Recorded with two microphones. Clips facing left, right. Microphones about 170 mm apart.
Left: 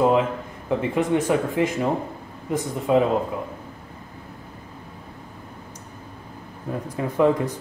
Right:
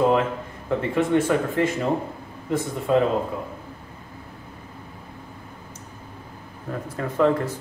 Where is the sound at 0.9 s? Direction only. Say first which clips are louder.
Right 1 dB; 15° left (ahead or behind).